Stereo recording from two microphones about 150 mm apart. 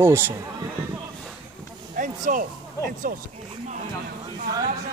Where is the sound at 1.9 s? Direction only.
60° right (ahead or behind).